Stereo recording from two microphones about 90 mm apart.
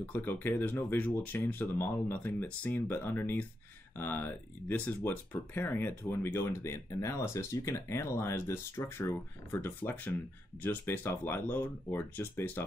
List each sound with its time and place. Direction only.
0.1 s speech: 20° left (ahead or behind)